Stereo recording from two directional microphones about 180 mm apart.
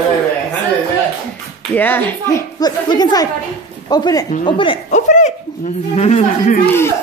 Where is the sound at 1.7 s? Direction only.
10° left (ahead or behind).